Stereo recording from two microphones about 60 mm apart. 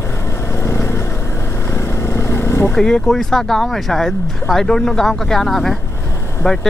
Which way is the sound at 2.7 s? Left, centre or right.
Centre.